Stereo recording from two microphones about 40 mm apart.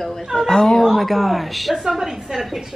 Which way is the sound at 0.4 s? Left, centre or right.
Centre.